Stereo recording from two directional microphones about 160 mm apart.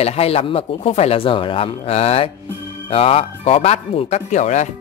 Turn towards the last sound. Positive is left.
turn(degrees=50)  # may be behind; listen again after turning